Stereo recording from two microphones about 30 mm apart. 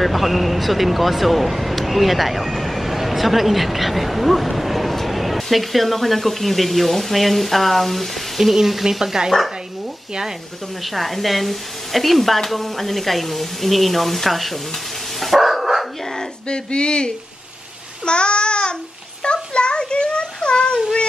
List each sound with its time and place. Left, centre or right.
0.0 s speech: centre
10.8 s speech: centre
15.1 s dog: centre
16.4 s speech: left
18.0 s child singing: left
19.2 s a sound: left